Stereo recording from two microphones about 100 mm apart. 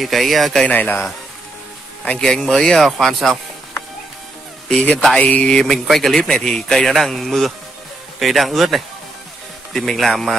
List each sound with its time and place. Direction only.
0.0 s speech: centre (ahead or behind)
0.7 s speech: 15° left (ahead or behind)
2.0 s speech: 5° left (ahead or behind)
4.6 s speech: 10° left (ahead or behind)